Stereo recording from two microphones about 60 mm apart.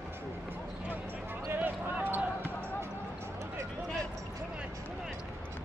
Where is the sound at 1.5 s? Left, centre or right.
Right.